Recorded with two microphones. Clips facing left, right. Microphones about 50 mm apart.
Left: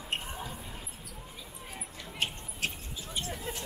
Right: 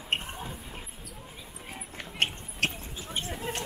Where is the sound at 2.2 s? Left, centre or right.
Right.